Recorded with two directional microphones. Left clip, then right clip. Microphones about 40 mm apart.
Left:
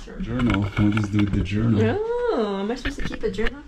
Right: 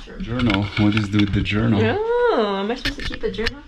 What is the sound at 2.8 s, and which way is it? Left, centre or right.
Speech, left.